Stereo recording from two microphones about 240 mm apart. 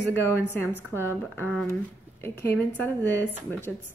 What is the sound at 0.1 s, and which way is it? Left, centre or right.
Speech, centre.